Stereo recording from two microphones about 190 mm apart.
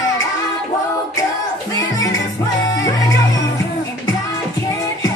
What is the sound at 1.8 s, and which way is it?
Music, 20° left (ahead or behind).